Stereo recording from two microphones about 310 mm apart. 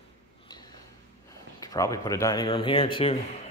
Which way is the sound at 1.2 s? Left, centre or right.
Centre.